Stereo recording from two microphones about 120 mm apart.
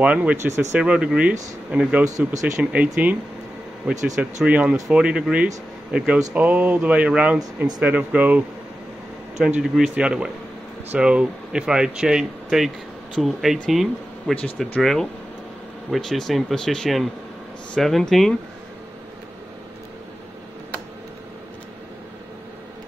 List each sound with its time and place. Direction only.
0.0 s speech: 10° right (ahead or behind)
0.5 s speech: 20° right (ahead or behind)
0.7 s speech: 10° right (ahead or behind)
9.6 s speech: 5° right (ahead or behind)